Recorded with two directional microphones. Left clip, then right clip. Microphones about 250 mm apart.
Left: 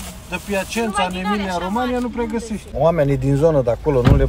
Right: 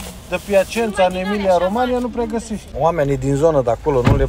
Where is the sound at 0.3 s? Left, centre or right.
Centre.